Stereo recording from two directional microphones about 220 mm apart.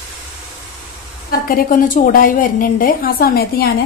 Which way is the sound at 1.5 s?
40° left (ahead or behind).